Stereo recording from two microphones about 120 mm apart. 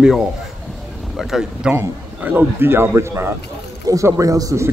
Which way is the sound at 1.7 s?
15° right (ahead or behind).